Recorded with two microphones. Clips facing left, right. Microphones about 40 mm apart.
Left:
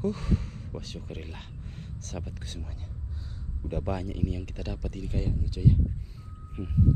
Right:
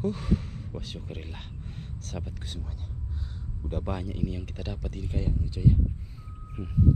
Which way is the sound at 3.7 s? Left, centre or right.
Centre.